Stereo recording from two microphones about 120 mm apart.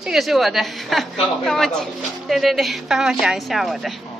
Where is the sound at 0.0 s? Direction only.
5° right (ahead or behind).